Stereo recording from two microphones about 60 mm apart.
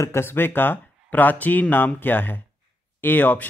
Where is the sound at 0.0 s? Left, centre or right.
Left.